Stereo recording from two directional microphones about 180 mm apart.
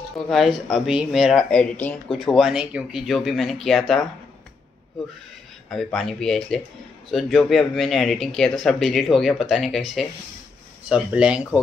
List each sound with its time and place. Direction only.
0.3 s speech: centre (ahead or behind)
5.7 s speech: centre (ahead or behind)